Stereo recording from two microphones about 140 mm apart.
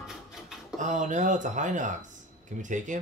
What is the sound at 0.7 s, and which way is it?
Speech, 65° right (ahead or behind).